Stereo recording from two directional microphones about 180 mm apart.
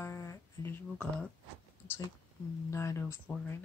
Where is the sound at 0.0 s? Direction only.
15° left (ahead or behind).